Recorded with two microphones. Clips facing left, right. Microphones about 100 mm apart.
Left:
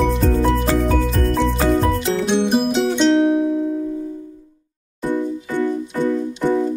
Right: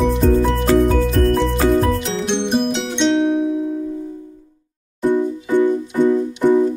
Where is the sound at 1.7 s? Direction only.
Centre (ahead or behind).